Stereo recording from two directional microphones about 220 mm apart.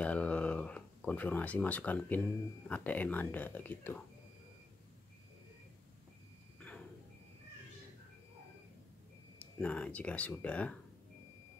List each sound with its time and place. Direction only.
0.0 s a sound: 5° left (ahead or behind)
2.7 s speech: 5° left (ahead or behind)
9.4 s speech: 5° left (ahead or behind)